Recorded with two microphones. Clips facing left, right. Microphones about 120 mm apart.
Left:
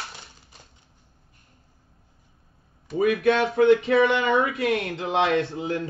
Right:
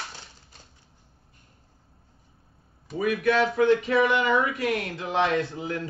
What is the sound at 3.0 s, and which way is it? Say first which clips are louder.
Speech: left 2 dB; 25° left (ahead or behind).